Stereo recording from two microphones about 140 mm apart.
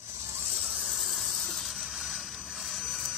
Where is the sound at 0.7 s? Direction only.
Centre (ahead or behind).